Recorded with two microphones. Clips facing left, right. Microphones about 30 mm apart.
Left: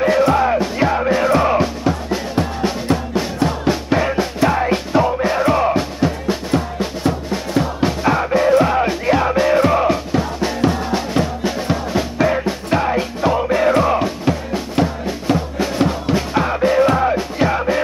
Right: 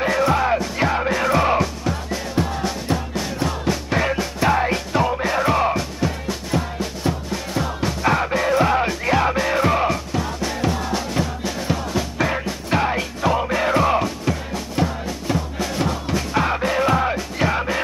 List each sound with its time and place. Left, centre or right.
0.2 s music: centre
1.6 s music: left
3.9 s music: centre
5.8 s music: left
8.0 s music: centre
10.1 s music: left
12.2 s music: centre
12.9 s music: centre
14.0 s music: left
16.7 s music: centre